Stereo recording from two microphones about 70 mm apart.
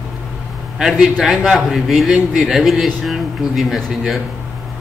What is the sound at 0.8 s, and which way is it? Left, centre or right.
A man's voice, centre.